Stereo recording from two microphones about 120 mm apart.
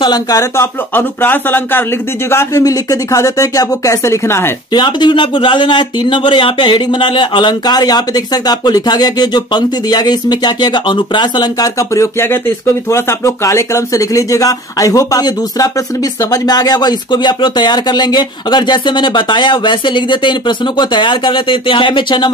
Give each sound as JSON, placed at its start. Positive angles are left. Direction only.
{"t": 0.0, "sound": "speech", "side_deg": 35}
{"t": 0.9, "sound": "speech", "side_deg": 15}
{"t": 2.3, "sound": "speech", "side_deg": 30}
{"t": 4.7, "sound": "speech", "side_deg": 40}
{"t": 11.9, "sound": "speech", "side_deg": 25}